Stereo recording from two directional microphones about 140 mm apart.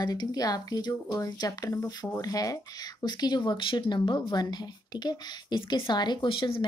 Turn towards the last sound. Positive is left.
turn(degrees=35)  # may be behind; listen again after turning